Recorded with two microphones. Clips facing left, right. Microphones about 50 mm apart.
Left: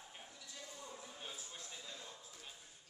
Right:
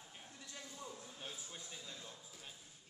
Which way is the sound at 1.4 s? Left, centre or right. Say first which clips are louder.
Even; centre.